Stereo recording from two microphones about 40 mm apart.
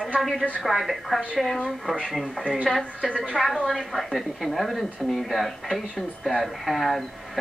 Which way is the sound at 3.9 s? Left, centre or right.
Centre.